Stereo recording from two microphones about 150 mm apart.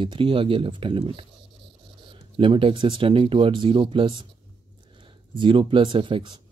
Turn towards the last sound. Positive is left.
turn(degrees=-30)  # may be behind; listen again after turning